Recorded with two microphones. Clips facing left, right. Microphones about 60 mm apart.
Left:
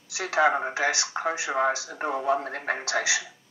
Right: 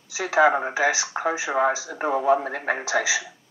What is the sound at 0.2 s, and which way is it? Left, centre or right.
Speech, centre.